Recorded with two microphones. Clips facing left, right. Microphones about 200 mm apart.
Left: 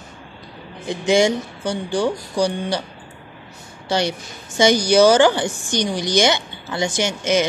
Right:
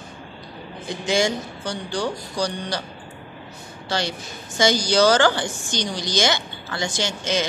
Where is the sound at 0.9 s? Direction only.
15° left (ahead or behind).